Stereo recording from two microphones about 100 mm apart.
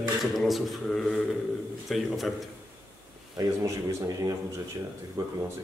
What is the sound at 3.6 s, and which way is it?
A man's voice, 35° right (ahead or behind).